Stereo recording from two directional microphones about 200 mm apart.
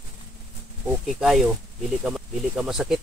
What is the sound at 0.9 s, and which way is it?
Speech, centre (ahead or behind).